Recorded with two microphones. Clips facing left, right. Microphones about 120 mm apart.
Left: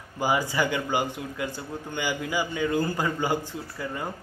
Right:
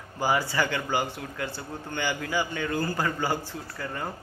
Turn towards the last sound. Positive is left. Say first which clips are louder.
# left 1 dB
turn(degrees=15)  # may be behind; listen again after turning